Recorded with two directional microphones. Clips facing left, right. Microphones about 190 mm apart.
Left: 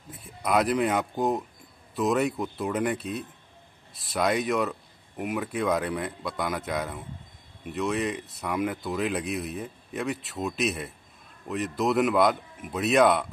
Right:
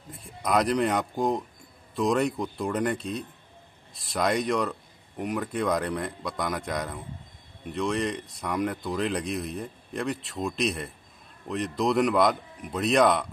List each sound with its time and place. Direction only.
0.1 s speech: centre (ahead or behind)